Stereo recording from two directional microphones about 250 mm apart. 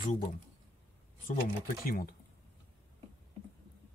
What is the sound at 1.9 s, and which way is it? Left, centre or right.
Speech, left.